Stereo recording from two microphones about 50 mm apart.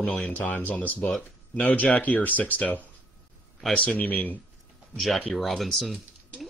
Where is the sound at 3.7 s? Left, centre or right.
Left.